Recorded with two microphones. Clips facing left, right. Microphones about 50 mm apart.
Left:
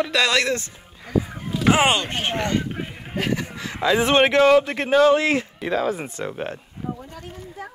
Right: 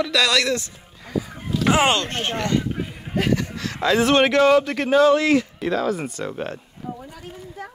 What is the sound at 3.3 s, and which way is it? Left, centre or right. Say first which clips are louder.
Speech: right 3 dB; centre.